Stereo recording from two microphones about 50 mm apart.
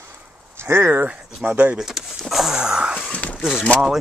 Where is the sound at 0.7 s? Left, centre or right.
Right.